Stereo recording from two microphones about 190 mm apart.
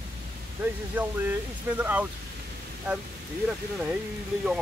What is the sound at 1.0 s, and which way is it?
Speech, 10° right (ahead or behind).